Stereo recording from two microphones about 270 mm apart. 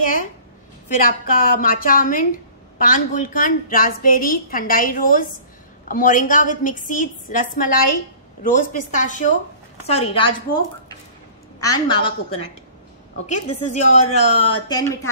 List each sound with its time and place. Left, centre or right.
1.0 s a woman's voice: left
11.6 s a woman's voice: centre
13.5 s a woman's voice: left
14.7 s a woman's voice: centre